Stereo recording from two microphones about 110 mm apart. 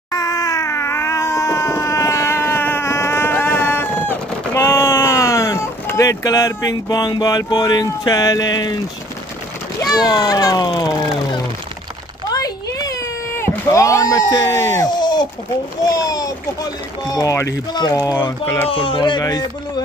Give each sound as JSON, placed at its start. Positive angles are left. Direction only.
{"t": 0.1, "sound": "crying", "side_deg": 30}
{"t": 9.8, "sound": "a child's voice", "side_deg": 35}
{"t": 12.4, "sound": "a sound", "side_deg": 35}
{"t": 13.4, "sound": "a child's voice", "side_deg": 25}
{"t": 18.7, "sound": "speech", "side_deg": 50}